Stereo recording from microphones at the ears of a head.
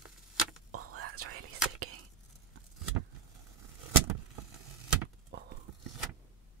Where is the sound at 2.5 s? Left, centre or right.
Right.